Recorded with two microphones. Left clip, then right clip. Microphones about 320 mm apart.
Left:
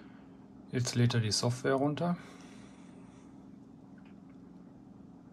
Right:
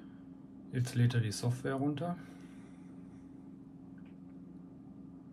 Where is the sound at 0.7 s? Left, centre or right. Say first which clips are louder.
Left 4 dB; centre.